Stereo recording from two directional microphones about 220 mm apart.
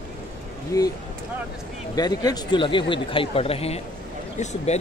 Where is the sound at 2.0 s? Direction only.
15° left (ahead or behind).